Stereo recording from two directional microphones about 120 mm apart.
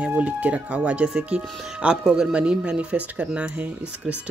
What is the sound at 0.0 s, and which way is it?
Speech, 10° right (ahead or behind).